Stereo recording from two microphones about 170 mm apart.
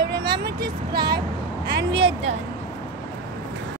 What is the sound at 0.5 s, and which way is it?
Speech, 25° right (ahead or behind).